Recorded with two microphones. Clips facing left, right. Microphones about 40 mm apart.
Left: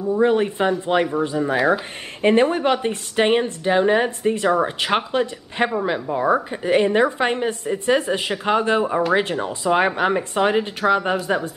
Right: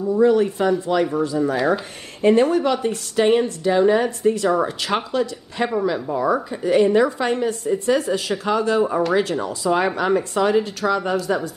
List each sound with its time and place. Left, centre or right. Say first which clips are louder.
0.2 s a woman's voice: right 2 dB; left
8.8 s speech: even; centre
9.1 s a woman's voice: even; left